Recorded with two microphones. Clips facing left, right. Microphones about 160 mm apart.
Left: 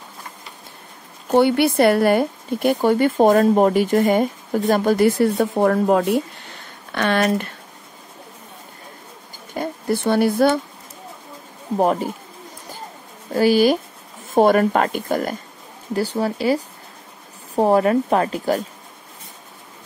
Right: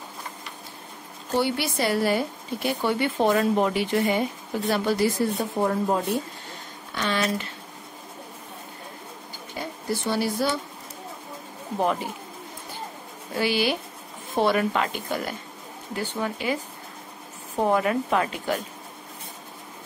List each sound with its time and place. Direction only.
1.3 s a woman's voice: 55° left (ahead or behind); by 6.2 s 75° left (ahead or behind)
6.9 s speech: 60° left (ahead or behind)
9.5 s speech: 55° left (ahead or behind)
11.8 s a woman's voice: 40° left (ahead or behind)
13.3 s a woman's voice: 40° left (ahead or behind)
15.9 s a woman's voice: 35° left (ahead or behind)